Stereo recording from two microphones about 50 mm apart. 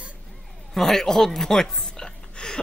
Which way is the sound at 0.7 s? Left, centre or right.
Centre.